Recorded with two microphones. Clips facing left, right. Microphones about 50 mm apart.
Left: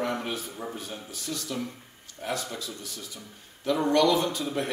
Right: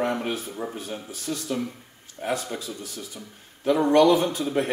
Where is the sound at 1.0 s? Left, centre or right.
Right.